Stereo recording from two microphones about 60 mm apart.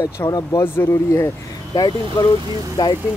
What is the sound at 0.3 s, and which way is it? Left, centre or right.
Speech, left.